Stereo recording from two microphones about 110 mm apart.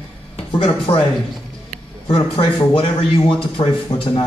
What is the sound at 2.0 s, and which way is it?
A man's voice, 50° left (ahead or behind).